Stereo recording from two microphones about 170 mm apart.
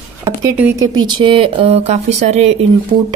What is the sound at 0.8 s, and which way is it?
Speech, 25° right (ahead or behind).